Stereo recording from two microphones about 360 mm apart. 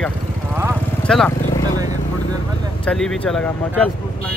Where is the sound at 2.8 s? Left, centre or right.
Centre.